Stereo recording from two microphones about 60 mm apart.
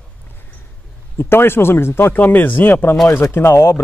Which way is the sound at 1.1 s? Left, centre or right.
Left.